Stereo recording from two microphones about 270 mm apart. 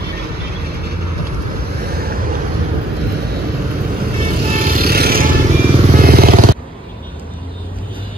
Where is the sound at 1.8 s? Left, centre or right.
Right.